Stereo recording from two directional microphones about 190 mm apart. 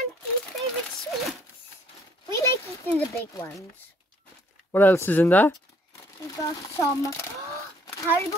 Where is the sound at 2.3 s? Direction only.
15° left (ahead or behind).